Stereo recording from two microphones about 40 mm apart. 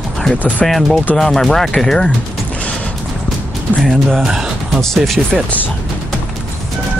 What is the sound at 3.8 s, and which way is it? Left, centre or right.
Speech, centre.